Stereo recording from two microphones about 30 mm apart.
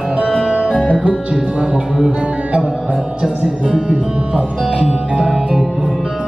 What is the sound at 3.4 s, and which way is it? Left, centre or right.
Speech, right.